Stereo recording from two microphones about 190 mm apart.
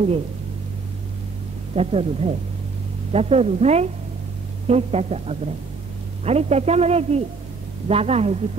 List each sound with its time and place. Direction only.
1.8 s a woman's voice: 30° right (ahead or behind)